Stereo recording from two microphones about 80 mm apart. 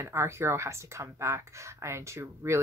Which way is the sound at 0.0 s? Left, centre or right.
Right.